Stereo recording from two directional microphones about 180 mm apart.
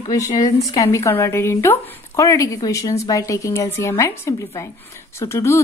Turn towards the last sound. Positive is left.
turn(degrees=15)  # may be behind; listen again after turning